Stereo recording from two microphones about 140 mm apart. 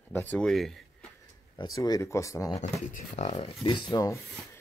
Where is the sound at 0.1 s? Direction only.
10° left (ahead or behind).